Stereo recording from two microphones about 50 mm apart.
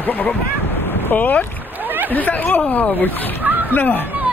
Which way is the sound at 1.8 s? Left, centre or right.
Right.